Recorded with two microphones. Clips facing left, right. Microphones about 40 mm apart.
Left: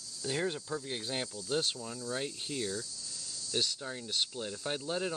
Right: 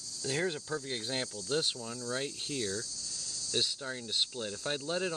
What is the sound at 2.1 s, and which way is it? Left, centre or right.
Speech, centre.